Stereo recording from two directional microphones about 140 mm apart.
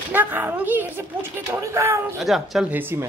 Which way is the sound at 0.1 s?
15° right (ahead or behind).